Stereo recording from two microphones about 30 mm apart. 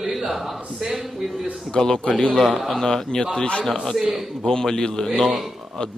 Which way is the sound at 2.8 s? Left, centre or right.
Left.